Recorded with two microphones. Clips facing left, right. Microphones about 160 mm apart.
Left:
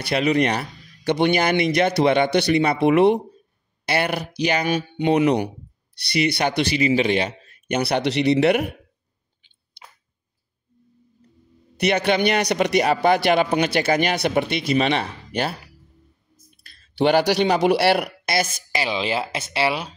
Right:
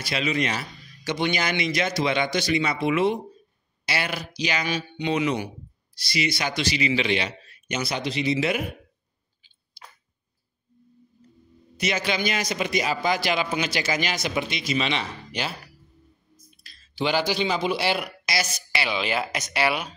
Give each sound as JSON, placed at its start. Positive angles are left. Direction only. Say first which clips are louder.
{"t": 0.0, "sound": "a man's voice", "louder": "left 7 dB", "side_deg": 60}
{"t": 11.7, "sound": "a man's voice", "louder": "left 7 dB", "side_deg": 60}
{"t": 16.6, "sound": "a man's voice", "louder": "left 8 dB", "side_deg": 60}